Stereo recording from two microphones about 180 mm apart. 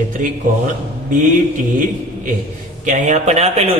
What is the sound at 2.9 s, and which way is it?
Speech, 45° right (ahead or behind).